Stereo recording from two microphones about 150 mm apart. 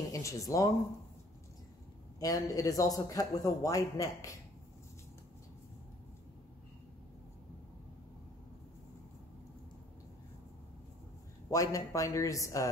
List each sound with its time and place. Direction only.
0.1 s speech: 20° left (ahead or behind)
2.1 s a man's voice: 25° left (ahead or behind)
11.5 s a man's voice: 20° left (ahead or behind)